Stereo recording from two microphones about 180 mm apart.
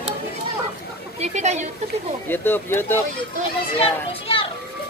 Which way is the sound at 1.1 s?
40° right (ahead or behind).